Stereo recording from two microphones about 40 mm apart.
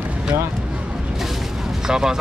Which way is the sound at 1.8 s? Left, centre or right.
Centre.